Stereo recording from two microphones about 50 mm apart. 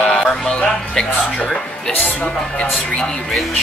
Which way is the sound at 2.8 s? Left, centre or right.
Centre.